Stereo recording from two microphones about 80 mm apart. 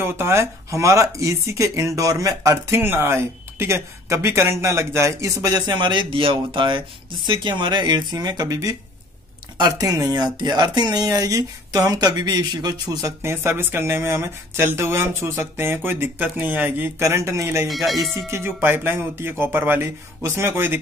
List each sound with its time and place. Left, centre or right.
0.0 s speech: right
5.4 s speech: right
9.6 s speech: right
10.1 s speech: right
11.1 s speech: right
13.0 s speech: right
17.0 s speech: right
17.6 s speech: centre
18.1 s speech: right